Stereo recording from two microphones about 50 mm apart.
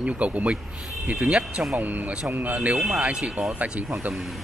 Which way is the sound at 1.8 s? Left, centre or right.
Right.